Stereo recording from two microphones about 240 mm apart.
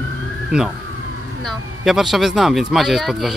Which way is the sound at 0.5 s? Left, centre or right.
Centre.